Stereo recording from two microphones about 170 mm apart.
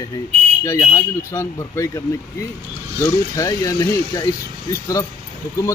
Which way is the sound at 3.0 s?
20° left (ahead or behind).